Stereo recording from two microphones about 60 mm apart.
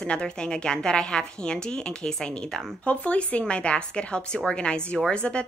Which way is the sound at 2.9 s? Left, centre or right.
Left.